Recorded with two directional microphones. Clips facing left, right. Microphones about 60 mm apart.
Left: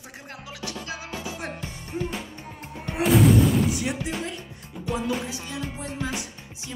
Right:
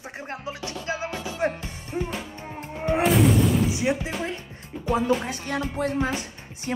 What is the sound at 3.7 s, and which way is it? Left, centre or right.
Speech, right.